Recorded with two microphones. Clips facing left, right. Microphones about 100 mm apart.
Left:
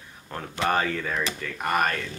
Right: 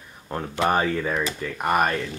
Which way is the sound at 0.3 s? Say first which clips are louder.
Right 3 dB; 20° right (ahead or behind).